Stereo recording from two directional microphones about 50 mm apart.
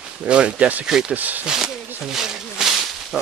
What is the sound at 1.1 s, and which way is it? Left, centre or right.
Speech, right.